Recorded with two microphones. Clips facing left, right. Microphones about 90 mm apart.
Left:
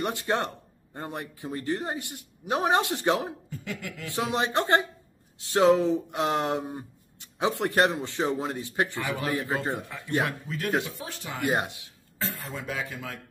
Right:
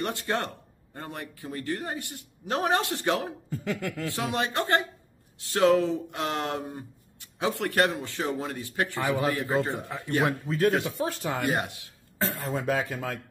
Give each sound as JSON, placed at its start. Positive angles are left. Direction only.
{"t": 0.0, "sound": "speech", "side_deg": 20}
{"t": 3.4, "sound": "speech", "side_deg": -40}
{"t": 4.1, "sound": "speech", "side_deg": 20}
{"t": 8.9, "sound": "a man's voice", "side_deg": -20}
{"t": 9.3, "sound": "speech", "side_deg": 20}
{"t": 9.8, "sound": "a man's voice", "side_deg": -25}
{"t": 10.9, "sound": "speech", "side_deg": -40}
{"t": 11.4, "sound": "speech", "side_deg": 20}
{"t": 12.2, "sound": "speech", "side_deg": -40}